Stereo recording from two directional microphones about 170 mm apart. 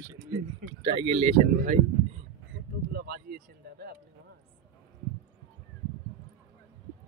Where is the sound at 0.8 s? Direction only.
30° right (ahead or behind).